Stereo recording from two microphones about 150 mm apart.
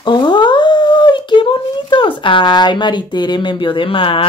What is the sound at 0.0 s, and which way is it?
Dog, 30° left (ahead or behind).